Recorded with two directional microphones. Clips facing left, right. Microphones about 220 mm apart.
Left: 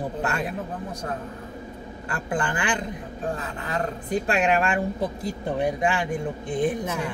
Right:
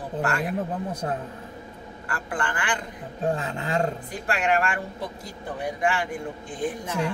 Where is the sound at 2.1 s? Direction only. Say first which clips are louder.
Left 3 dB; 20° left (ahead or behind).